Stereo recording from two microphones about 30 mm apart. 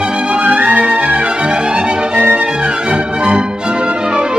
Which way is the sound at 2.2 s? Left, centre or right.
Right.